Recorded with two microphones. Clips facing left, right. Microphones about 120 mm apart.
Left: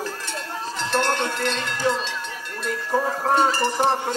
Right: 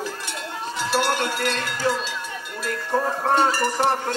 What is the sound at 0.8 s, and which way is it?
Speech, 5° right (ahead or behind).